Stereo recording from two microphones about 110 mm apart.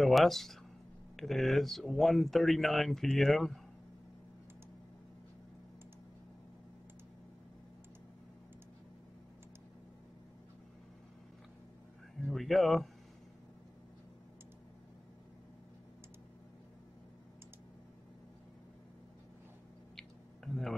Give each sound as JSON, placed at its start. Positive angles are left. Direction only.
{"t": 0.0, "sound": "speech", "side_deg": 0}
{"t": 12.2, "sound": "speech", "side_deg": 0}
{"t": 20.0, "sound": "a sound", "side_deg": 5}